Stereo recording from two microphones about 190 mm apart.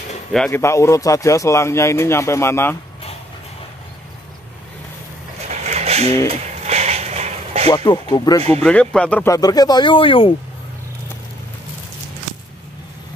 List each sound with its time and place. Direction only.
0.5 s speech: 15° left (ahead or behind)
5.5 s vehicle: 35° right (ahead or behind)
6.2 s a sound: 35° right (ahead or behind)
7.7 s speech: 20° left (ahead or behind)
8.4 s speech: 30° right (ahead or behind)
8.6 s speech: 5° left (ahead or behind); by 10.3 s 30° left (ahead or behind)